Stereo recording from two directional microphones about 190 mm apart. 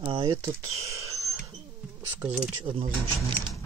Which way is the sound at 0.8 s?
15° right (ahead or behind).